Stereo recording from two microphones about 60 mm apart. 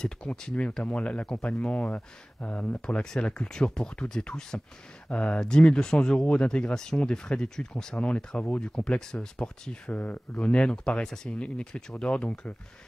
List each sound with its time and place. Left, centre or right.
0.0 s speech: centre
9.9 s speech: left